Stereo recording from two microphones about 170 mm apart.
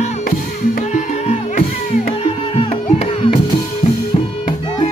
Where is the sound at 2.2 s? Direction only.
35° left (ahead or behind).